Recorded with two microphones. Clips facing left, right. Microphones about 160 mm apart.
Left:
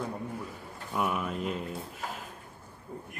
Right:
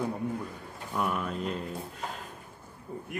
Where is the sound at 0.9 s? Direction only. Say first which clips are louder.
Even; 5° left (ahead or behind).